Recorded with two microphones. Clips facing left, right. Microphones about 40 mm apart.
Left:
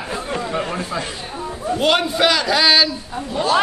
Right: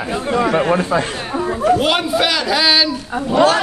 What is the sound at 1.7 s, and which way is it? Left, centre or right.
Speech, centre.